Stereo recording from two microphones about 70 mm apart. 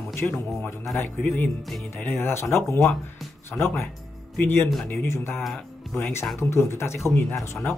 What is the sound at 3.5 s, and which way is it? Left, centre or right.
A man's voice, left.